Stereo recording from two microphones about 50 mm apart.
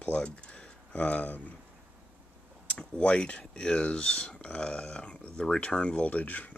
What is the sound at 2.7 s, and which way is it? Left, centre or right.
Speech, left.